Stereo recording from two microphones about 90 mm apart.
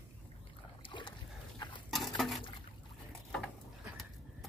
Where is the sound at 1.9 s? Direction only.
Centre (ahead or behind).